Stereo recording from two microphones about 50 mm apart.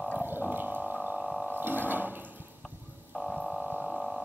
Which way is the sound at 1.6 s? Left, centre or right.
Right.